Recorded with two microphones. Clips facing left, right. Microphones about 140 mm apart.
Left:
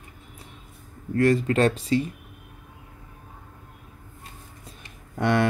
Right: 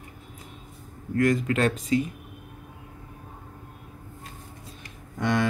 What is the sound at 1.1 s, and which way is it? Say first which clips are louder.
Speech: left 3 dB; 35° left (ahead or behind).